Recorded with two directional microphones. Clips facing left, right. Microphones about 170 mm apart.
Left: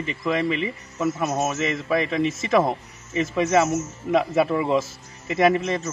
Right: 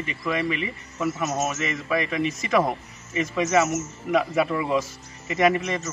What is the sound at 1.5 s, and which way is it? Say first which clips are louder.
Speech: left 3 dB; 30° left (ahead or behind).